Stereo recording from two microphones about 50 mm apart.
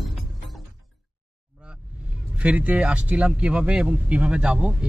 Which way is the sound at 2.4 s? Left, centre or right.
Right.